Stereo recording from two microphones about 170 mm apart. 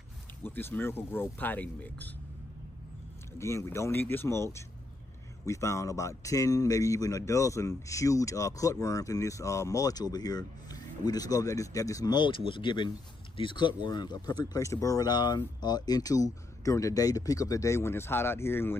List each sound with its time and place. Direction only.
0.4 s speech: 10° left (ahead or behind)
3.3 s speech: 15° left (ahead or behind)